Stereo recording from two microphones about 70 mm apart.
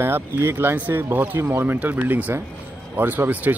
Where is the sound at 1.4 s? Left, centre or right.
Right.